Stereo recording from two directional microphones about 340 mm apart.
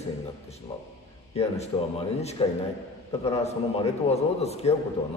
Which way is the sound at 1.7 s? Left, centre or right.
Centre.